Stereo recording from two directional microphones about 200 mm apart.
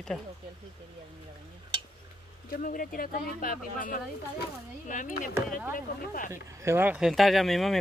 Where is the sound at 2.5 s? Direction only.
45° left (ahead or behind).